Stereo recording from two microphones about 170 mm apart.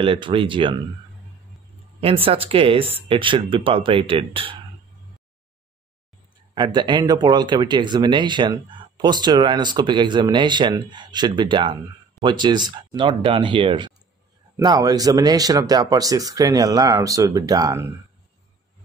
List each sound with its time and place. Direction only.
0.0 s speech: 30° right (ahead or behind)
2.0 s speech: 35° right (ahead or behind)
6.5 s speech: 25° right (ahead or behind)